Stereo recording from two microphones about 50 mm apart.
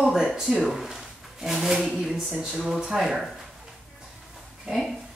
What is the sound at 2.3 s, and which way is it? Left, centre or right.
Speech, right.